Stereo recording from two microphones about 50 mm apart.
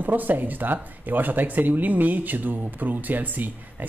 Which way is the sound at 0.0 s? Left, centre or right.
Right.